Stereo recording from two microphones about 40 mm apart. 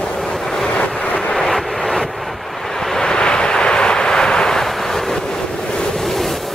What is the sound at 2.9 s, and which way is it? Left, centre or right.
Vehicle, centre.